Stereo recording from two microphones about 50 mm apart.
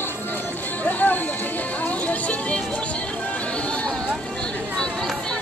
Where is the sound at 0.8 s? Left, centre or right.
Left.